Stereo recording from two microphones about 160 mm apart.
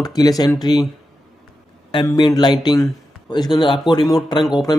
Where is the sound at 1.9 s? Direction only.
30° left (ahead or behind).